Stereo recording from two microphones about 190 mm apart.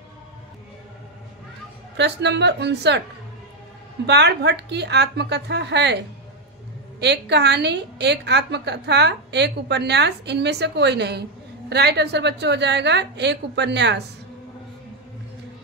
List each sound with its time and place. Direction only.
2.0 s a woman's voice: 65° right (ahead or behind)
4.0 s a woman's voice: 65° right (ahead or behind)
7.0 s a woman's voice: 65° right (ahead or behind)